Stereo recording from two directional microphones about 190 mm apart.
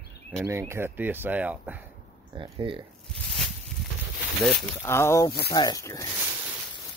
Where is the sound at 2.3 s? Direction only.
25° right (ahead or behind).